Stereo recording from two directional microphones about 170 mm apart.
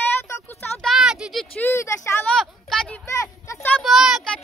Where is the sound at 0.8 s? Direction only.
Centre (ahead or behind).